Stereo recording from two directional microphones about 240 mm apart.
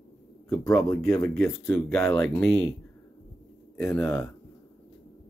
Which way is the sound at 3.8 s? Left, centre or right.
Centre.